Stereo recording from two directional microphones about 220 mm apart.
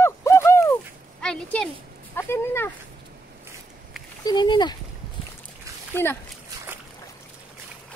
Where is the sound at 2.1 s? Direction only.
10° left (ahead or behind).